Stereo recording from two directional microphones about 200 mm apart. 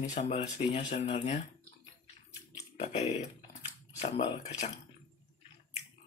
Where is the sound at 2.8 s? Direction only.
30° left (ahead or behind).